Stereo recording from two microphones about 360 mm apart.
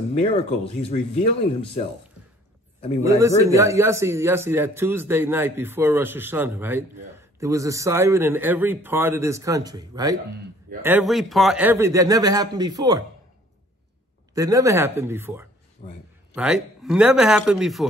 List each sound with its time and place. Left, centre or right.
0.8 s speech: centre
3.0 s speech: centre
14.3 s a man's voice: centre